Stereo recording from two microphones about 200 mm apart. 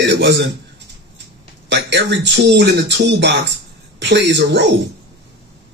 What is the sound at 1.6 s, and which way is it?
Speech, 60° right (ahead or behind).